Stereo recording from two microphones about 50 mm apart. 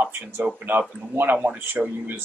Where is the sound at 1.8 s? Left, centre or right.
Right.